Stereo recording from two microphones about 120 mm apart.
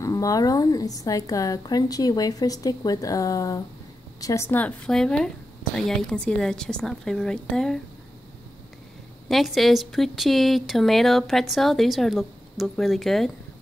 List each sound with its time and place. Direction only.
0.0 s a woman's voice: 30° left (ahead or behind)
4.5 s speech: 15° left (ahead or behind)
9.3 s speech: centre (ahead or behind)